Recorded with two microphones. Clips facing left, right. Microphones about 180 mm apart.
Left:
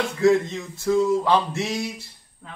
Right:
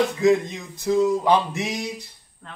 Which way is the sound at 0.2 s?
15° right (ahead or behind).